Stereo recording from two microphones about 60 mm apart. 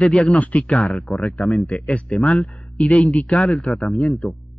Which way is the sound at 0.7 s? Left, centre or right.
Centre.